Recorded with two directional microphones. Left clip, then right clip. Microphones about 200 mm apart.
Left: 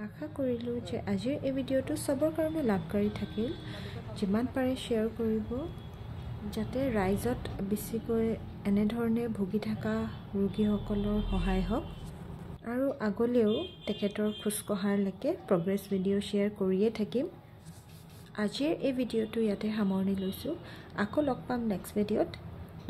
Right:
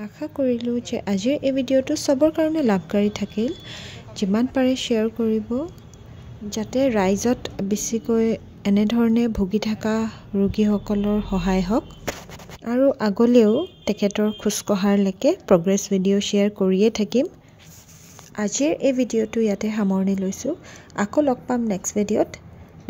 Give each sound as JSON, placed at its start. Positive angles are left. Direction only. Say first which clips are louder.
{"t": 0.0, "sound": "a woman's voice", "louder": "right 11 dB", "side_deg": -40}
{"t": 18.3, "sound": "a woman's voice", "louder": "right 10 dB", "side_deg": -30}